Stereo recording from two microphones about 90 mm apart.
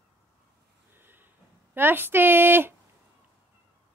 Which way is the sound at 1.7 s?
25° right (ahead or behind).